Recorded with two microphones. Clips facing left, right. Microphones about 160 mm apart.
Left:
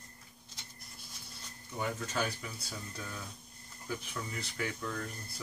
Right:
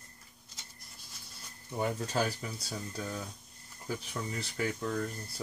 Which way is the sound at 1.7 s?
35° right (ahead or behind).